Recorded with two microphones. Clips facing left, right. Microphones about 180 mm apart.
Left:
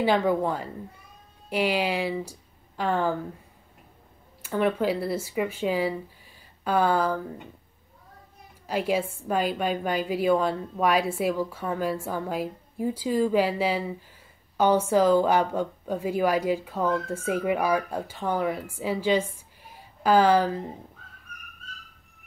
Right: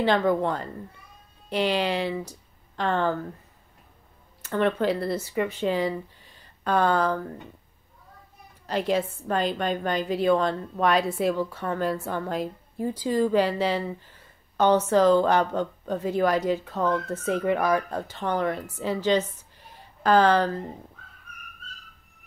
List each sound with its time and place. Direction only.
0.0 s speech: 10° left (ahead or behind)
4.4 s speech: 10° left (ahead or behind)
8.6 s speech: 10° left (ahead or behind)